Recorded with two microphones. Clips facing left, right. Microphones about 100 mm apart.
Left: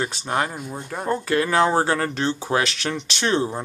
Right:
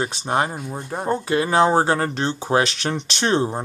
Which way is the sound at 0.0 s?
25° right (ahead or behind).